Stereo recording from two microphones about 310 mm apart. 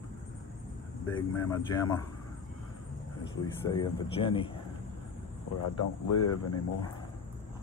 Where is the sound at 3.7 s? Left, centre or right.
Centre.